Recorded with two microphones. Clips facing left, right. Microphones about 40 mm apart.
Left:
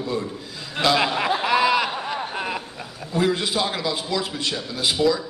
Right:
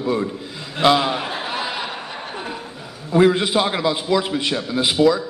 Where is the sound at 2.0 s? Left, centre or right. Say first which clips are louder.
Left 3 dB; left.